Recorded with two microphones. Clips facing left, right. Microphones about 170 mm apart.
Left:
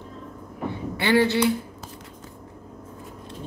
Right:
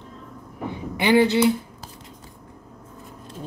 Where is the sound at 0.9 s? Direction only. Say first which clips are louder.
Right 3 dB; 15° right (ahead or behind).